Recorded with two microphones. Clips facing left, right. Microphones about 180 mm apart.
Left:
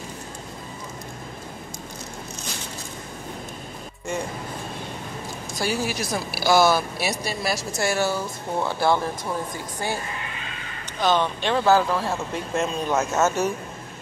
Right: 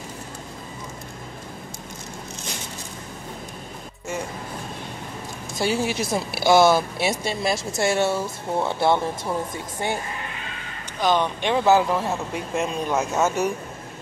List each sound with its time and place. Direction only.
5.6 s speech: 25° right (ahead or behind)
11.0 s speech: 15° right (ahead or behind)